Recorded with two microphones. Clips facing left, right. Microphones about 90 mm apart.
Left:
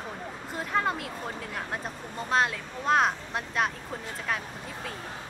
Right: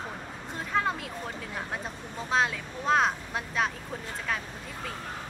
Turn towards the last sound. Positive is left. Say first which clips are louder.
# left 1 dB
turn(degrees=0)  # may be behind; listen again after turning